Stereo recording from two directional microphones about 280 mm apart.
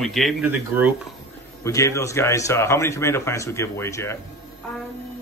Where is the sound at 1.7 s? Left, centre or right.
Centre.